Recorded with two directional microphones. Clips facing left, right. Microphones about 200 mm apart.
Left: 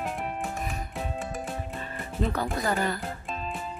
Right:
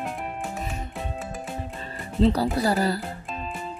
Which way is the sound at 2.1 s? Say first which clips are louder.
Right 8 dB; 30° right (ahead or behind).